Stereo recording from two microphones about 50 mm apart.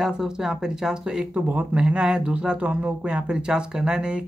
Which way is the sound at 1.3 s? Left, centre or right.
Right.